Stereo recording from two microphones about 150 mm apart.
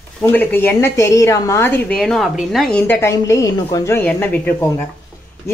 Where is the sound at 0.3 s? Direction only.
10° left (ahead or behind).